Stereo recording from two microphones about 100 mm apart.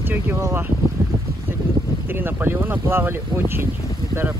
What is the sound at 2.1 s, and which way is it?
Speech, 20° right (ahead or behind).